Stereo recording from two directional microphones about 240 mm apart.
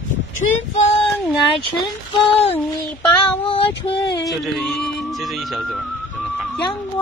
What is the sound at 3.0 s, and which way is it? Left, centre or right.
Female singing, left.